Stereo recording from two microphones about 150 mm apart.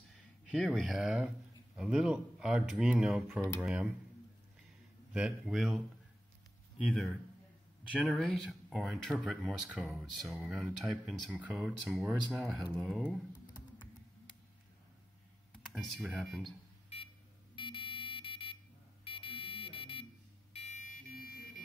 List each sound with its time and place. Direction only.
0.1 s speech: centre (ahead or behind)
5.1 s speech: 5° right (ahead or behind)
6.9 s speech: 5° left (ahead or behind)
15.7 s speech: centre (ahead or behind)
17.6 s a sound: 35° left (ahead or behind)
19.0 s buzzer: 35° left (ahead or behind)
20.5 s buzzer: 50° left (ahead or behind); by 21.6 s 75° left (ahead or behind)